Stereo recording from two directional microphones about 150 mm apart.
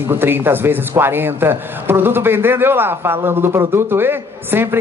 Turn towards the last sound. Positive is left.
turn(degrees=-15)  # may be behind; listen again after turning